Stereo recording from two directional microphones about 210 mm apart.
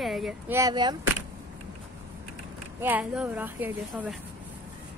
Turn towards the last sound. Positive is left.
turn(degrees=-10)  # may be behind; listen again after turning